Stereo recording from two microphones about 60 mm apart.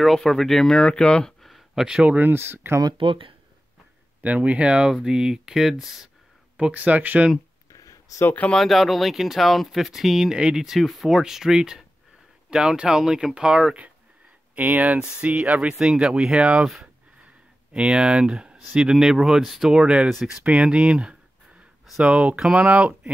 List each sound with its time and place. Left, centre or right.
0.0 s speech: centre
1.4 s a sound: centre
2.0 s speech: right
2.3 s speech: right
4.2 s speech: right; by 5.9 s centre
6.7 s speech: right
7.7 s a sound: left
8.5 s speech: centre
14.5 s speech: right
17.7 s speech: centre